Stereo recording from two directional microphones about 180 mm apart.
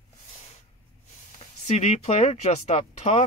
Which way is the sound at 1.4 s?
35° left (ahead or behind).